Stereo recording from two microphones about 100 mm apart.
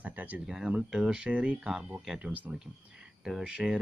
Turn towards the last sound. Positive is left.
turn(degrees=-5)  # may be behind; listen again after turning